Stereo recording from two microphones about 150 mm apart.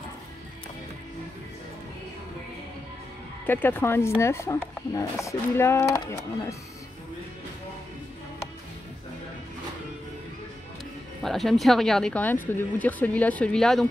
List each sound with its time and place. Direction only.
3.4 s speech: 15° left (ahead or behind)
11.2 s speech: centre (ahead or behind)